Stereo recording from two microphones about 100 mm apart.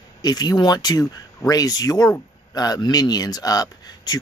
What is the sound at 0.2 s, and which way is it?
Speech, 40° left (ahead or behind).